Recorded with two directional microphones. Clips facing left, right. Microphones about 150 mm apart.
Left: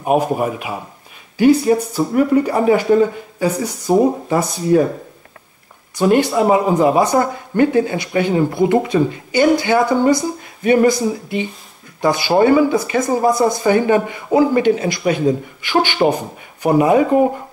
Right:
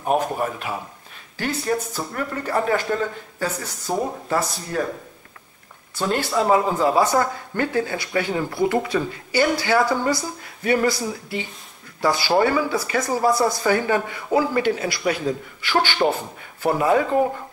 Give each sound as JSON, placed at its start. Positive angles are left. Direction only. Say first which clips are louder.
{"t": 0.0, "sound": "speech", "louder": "left 5 dB", "side_deg": 10}
{"t": 5.9, "sound": "speech", "louder": "left 8 dB", "side_deg": 20}